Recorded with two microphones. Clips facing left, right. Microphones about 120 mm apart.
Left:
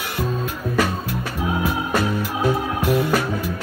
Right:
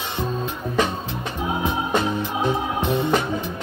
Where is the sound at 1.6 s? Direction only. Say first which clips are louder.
Even; 20° right (ahead or behind).